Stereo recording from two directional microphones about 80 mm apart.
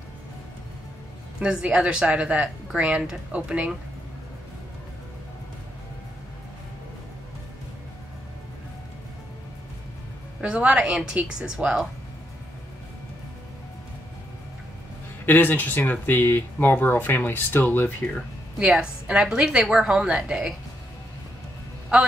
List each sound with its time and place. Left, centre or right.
1.4 s speech: centre
10.4 s speech: centre
15.2 s speech: left
18.6 s speech: centre